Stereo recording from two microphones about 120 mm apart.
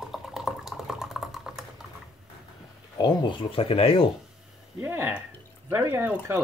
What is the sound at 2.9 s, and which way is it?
Speech, 40° left (ahead or behind).